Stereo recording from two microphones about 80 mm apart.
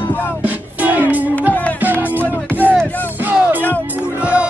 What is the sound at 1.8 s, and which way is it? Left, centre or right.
Music, right.